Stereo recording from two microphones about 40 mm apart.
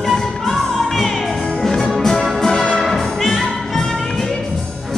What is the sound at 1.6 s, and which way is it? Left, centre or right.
Music, centre.